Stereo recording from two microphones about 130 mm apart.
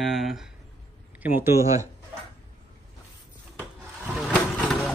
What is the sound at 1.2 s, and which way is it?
Speech, 15° right (ahead or behind).